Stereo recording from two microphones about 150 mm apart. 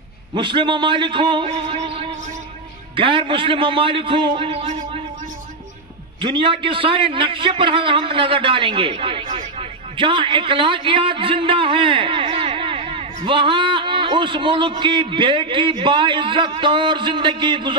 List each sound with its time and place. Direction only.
0.3 s a man's voice: 30° right (ahead or behind)
6.2 s a man's voice: 35° right (ahead or behind)